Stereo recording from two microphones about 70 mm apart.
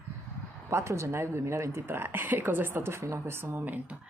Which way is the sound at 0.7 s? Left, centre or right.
Right.